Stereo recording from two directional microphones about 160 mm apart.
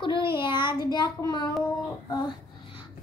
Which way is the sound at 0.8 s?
25° left (ahead or behind).